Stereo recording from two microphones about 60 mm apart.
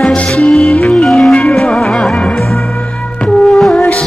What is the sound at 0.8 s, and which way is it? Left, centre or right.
Music, left.